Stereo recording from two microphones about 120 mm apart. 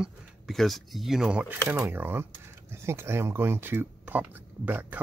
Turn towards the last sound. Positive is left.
turn(degrees=-15)  # may be behind; listen again after turning